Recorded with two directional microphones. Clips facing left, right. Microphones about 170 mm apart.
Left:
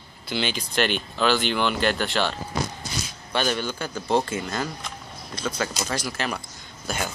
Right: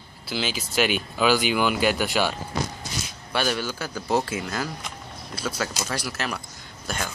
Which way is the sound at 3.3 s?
5° right (ahead or behind).